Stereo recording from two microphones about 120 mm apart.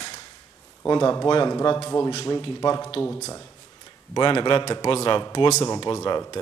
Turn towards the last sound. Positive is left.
turn(degrees=35)  # may be behind; listen again after turning